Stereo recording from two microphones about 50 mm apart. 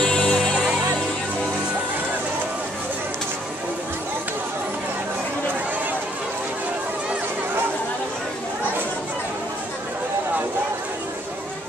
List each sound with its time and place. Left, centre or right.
0.0 s music: centre